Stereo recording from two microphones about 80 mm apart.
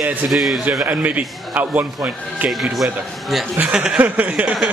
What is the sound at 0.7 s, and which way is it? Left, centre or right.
A man's voice, centre.